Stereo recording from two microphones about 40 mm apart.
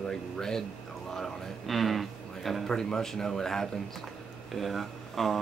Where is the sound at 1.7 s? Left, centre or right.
Centre.